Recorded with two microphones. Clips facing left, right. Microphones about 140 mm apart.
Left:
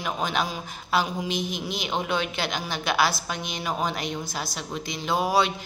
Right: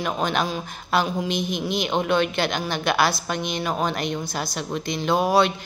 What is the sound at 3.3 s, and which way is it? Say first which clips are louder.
Speech: right 6 dB; 60° right (ahead or behind).